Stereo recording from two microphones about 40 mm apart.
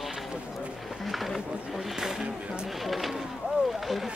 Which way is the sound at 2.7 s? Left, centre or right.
Centre.